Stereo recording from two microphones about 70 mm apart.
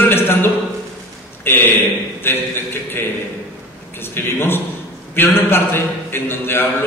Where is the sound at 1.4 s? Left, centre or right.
Left.